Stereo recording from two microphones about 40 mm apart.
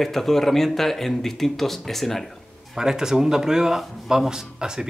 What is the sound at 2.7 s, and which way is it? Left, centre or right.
Speech, centre.